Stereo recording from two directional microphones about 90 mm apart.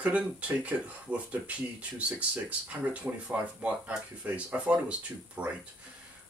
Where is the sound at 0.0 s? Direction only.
15° right (ahead or behind).